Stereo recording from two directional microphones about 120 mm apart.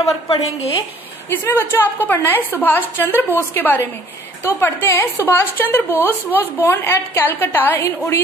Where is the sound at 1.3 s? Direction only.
15° left (ahead or behind).